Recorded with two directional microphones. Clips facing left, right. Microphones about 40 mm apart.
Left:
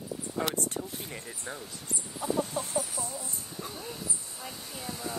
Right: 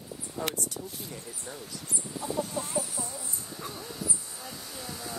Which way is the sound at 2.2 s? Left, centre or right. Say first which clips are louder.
Left 2 dB; left.